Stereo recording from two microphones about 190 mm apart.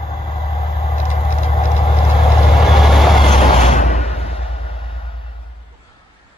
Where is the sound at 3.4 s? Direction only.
35° left (ahead or behind).